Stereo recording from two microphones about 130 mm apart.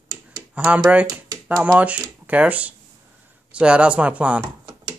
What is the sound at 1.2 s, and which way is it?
Typewriter, 25° right (ahead or behind).